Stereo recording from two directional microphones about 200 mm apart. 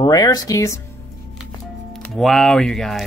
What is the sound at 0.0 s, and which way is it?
Speech, 20° left (ahead or behind).